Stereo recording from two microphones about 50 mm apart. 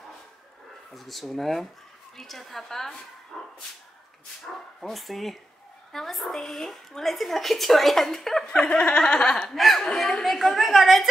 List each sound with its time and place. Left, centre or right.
0.9 s a woman's voice: centre
3.3 s dog: centre
4.8 s a woman's voice: centre
9.6 s a woman's voice: centre